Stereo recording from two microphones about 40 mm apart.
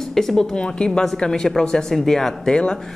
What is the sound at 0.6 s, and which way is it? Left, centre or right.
Speech, left.